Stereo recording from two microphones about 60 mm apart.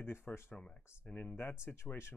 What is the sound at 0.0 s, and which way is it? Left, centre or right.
Speech, left.